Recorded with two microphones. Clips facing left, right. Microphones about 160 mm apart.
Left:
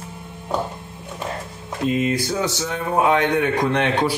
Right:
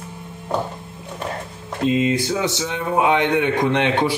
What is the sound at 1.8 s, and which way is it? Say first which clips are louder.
A man's voice: right 2 dB; 20° right (ahead or behind).